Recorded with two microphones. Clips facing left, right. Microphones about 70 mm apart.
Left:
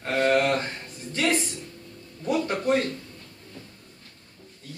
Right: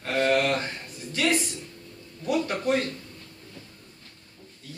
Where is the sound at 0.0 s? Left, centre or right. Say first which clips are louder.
Left 1 dB; centre.